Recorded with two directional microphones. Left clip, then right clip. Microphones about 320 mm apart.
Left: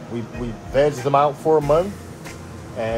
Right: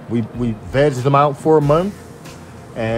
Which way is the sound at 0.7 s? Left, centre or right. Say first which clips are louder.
Right 2 dB; right.